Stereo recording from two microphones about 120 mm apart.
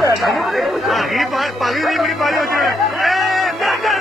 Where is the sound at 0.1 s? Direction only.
Centre (ahead or behind).